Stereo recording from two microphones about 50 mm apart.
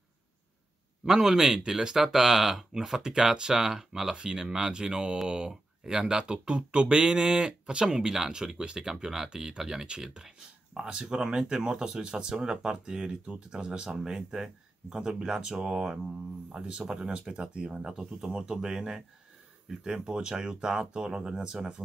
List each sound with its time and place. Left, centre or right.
1.0 s speech: centre